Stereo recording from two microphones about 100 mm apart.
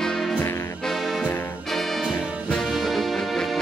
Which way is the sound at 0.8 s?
Centre (ahead or behind).